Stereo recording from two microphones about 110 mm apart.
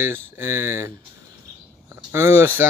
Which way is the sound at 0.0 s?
20° right (ahead or behind).